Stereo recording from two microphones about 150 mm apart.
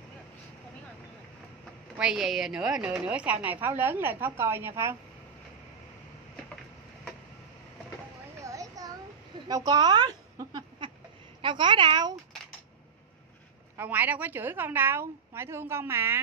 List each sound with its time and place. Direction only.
2.0 s a woman's voice: 5° right (ahead or behind)
8.4 s a sound: 20° right (ahead or behind)
11.4 s a woman's voice: 30° right (ahead or behind)
13.7 s a woman's voice: 10° right (ahead or behind)